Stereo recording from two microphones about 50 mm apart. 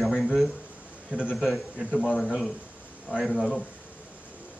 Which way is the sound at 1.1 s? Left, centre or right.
Right.